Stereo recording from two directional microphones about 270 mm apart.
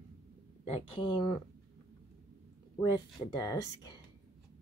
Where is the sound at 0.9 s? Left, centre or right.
Centre.